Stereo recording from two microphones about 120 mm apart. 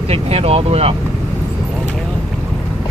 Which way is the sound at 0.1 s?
55° right (ahead or behind).